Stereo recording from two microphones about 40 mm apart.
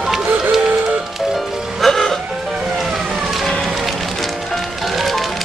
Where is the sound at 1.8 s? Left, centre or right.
Centre.